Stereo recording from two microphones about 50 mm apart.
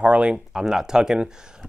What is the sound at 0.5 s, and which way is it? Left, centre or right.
Speech, centre.